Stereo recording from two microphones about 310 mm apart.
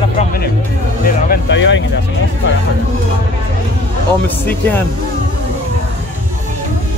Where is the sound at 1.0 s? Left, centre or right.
Left.